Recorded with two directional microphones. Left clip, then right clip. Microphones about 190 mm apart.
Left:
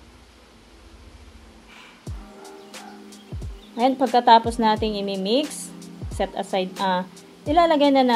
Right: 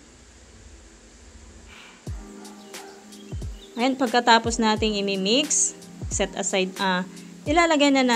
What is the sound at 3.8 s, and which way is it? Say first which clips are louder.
A woman's voice: left 3 dB; 25° right (ahead or behind).